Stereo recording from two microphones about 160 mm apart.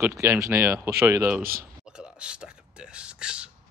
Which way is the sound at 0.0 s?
15° right (ahead or behind).